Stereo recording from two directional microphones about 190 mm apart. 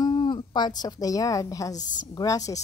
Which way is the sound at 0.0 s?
20° left (ahead or behind).